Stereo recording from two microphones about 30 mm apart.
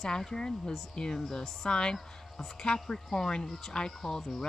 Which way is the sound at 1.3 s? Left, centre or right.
Centre.